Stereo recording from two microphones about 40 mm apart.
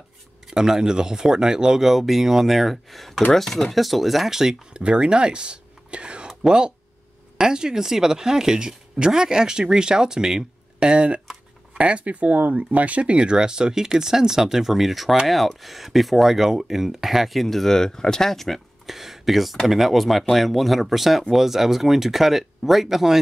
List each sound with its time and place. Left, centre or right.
0.5 s speech: centre
4.7 s speech: right; by 18.6 s centre
18.9 s speech: centre